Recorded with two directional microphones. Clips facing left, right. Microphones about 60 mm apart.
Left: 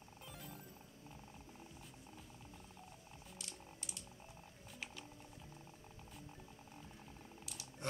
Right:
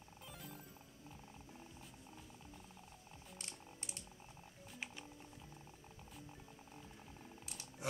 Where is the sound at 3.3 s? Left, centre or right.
Right.